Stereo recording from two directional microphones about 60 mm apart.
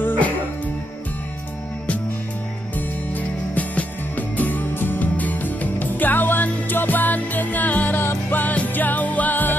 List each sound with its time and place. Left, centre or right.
3.2 s music: left